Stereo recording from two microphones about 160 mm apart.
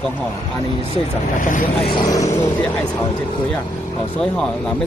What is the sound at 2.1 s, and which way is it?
Speech, 20° left (ahead or behind).